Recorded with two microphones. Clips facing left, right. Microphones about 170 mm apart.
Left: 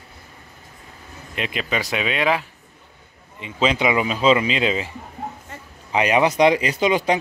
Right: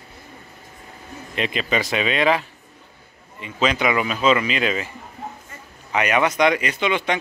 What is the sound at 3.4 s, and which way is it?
Speech, 25° left (ahead or behind).